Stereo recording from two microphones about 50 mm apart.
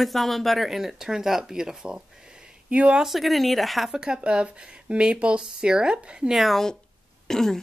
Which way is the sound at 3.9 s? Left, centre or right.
Centre.